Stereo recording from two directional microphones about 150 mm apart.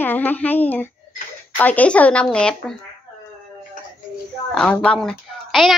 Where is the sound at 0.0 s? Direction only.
10° left (ahead or behind).